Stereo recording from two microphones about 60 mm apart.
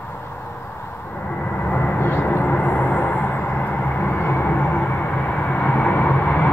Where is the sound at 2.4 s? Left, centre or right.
Left.